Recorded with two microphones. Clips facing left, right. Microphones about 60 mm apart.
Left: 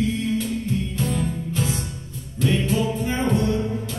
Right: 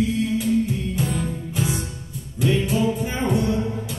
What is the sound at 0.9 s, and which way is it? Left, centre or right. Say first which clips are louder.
Music: even; centre.